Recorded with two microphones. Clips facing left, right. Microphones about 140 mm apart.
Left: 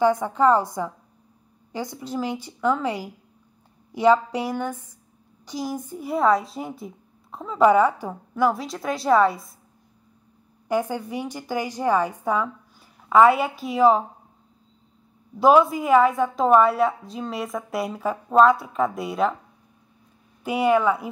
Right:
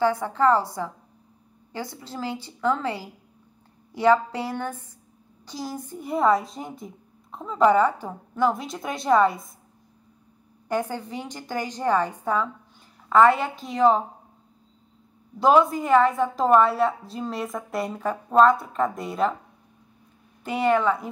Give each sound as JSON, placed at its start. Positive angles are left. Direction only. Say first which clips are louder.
{"t": 0.0, "sound": "a woman's voice", "louder": "left 2 dB", "side_deg": 15}
{"t": 10.7, "sound": "a woman's voice", "louder": "left 3 dB", "side_deg": 10}
{"t": 15.3, "sound": "a woman's voice", "louder": "left 2 dB", "side_deg": 5}
{"t": 20.4, "sound": "a woman's voice", "louder": "left 2 dB", "side_deg": 10}